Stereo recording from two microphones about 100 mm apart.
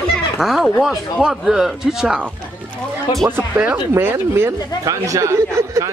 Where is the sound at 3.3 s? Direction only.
20° right (ahead or behind).